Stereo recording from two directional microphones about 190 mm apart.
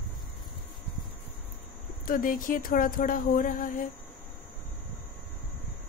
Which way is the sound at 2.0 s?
45° left (ahead or behind).